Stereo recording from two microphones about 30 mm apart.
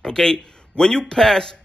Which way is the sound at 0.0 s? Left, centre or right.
Left.